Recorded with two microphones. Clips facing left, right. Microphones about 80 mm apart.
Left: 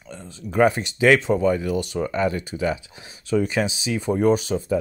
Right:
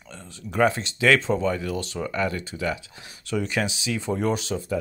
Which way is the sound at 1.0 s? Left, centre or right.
Centre.